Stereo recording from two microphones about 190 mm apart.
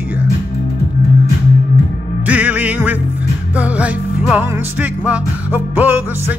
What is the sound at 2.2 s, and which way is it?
Music, 10° right (ahead or behind).